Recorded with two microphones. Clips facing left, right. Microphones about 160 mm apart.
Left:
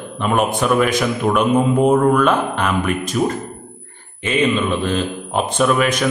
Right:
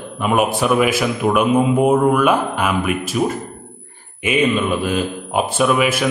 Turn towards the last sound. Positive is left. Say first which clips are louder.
# even
turn(degrees=-5)  # may be behind; listen again after turning